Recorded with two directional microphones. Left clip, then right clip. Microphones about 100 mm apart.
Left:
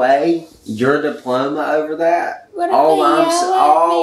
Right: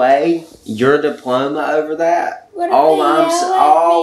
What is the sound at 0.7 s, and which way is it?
Speech, 15° right (ahead or behind).